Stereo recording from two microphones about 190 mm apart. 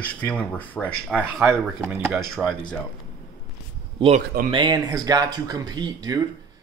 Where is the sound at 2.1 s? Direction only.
Centre (ahead or behind).